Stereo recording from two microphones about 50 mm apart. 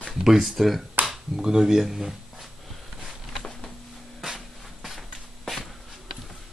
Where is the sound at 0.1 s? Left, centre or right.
Centre.